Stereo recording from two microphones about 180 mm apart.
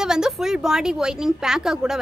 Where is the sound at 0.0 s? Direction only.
5° right (ahead or behind).